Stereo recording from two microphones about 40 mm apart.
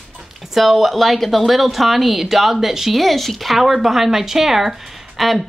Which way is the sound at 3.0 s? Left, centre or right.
Centre.